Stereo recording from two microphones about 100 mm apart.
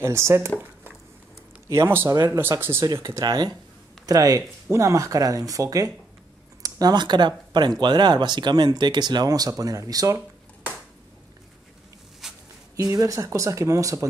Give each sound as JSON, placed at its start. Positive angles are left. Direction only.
{"t": 0.0, "sound": "speech", "side_deg": -25}
{"t": 1.7, "sound": "speech", "side_deg": -25}
{"t": 2.8, "sound": "speech", "side_deg": -35}
{"t": 12.2, "sound": "a sound", "side_deg": -5}
{"t": 12.7, "sound": "speech", "side_deg": -35}